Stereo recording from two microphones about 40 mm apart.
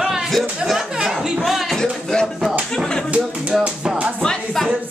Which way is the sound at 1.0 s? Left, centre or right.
Centre.